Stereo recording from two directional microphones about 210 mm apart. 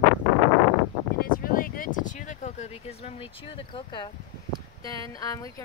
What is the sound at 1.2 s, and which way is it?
Speech, 45° left (ahead or behind).